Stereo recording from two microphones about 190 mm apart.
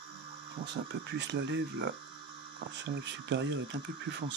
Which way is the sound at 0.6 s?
65° right (ahead or behind).